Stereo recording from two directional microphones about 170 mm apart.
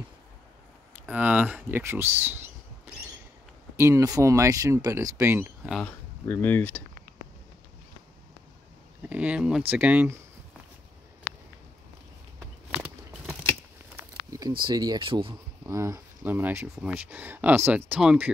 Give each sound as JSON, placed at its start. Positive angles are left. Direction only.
{"t": 1.0, "sound": "speech", "side_deg": -10}
{"t": 3.7, "sound": "speech", "side_deg": -15}
{"t": 5.6, "sound": "speech", "side_deg": 0}
{"t": 5.9, "sound": "speech", "side_deg": 10}
{"t": 9.1, "sound": "speech", "side_deg": -5}
{"t": 12.4, "sound": "a sound", "side_deg": -15}
{"t": 14.6, "sound": "speech", "side_deg": -25}
{"t": 15.6, "sound": "speech", "side_deg": -15}